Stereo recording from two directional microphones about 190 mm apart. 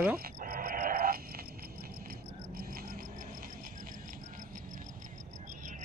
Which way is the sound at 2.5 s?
50° right (ahead or behind).